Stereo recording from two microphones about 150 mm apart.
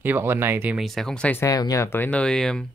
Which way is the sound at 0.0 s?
15° right (ahead or behind).